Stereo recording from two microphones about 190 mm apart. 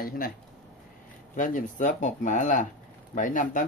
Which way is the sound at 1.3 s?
45° left (ahead or behind).